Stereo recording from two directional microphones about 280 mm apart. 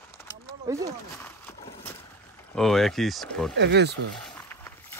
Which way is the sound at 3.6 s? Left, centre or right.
Right.